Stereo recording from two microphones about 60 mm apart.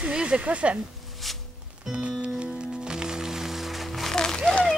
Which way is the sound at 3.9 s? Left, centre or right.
Centre.